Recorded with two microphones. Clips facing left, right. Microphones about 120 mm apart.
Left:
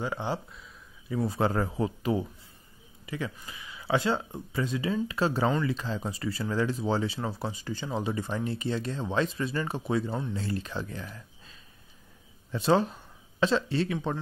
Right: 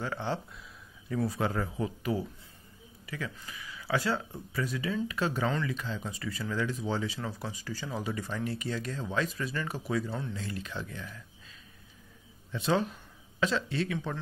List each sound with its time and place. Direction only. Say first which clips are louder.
0.0 s speech: left 2 dB; 15° left (ahead or behind)
1.2 s speech: left 4 dB; 30° left (ahead or behind)
1.5 s speech: left 4 dB; 40° left (ahead or behind)
2.1 s speech: left 3 dB; 25° left (ahead or behind)
3.3 s speech: left 1 dB; 20° left (ahead or behind)
11.1 s a sound: left 2 dB; 35° left (ahead or behind)
12.4 s speech: left 4 dB; 35° left (ahead or behind)